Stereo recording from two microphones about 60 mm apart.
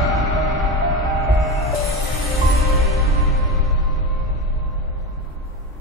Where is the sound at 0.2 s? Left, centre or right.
Centre.